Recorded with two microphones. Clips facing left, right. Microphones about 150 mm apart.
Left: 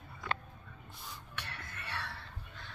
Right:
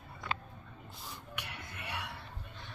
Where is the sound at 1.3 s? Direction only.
15° right (ahead or behind).